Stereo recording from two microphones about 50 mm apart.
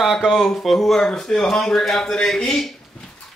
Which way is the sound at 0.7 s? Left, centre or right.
Centre.